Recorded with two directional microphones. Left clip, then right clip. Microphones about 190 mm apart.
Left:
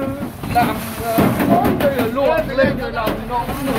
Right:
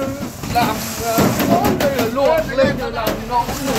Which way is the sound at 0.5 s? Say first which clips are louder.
Left 1 dB; 10° right (ahead or behind).